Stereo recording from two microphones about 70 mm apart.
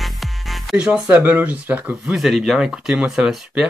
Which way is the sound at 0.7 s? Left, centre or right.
Centre.